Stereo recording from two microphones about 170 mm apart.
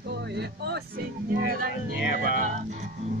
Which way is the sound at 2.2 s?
45° right (ahead or behind).